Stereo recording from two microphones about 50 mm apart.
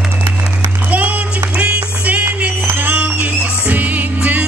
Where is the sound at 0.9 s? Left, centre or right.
Right.